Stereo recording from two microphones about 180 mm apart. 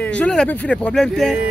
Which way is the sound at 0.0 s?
5° left (ahead or behind).